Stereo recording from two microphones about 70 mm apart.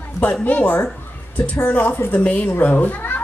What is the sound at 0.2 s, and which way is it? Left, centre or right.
Speech, left.